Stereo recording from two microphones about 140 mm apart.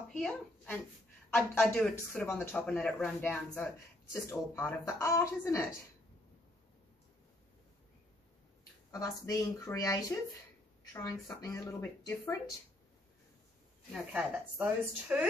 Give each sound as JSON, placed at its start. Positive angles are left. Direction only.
{"t": 0.2, "sound": "speech", "side_deg": 10}
{"t": 2.6, "sound": "a man's voice", "side_deg": 5}
{"t": 8.9, "sound": "a man's voice", "side_deg": 25}
{"t": 13.9, "sound": "a woman's voice", "side_deg": -10}